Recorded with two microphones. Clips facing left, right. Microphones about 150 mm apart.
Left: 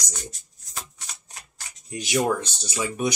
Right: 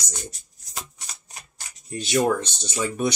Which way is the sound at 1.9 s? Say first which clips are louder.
Right 2 dB; 15° left (ahead or behind).